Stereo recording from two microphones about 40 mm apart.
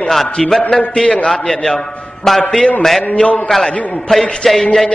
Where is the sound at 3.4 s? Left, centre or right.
Centre.